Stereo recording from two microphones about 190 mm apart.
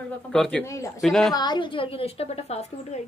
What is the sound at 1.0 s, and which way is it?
Speech, centre (ahead or behind).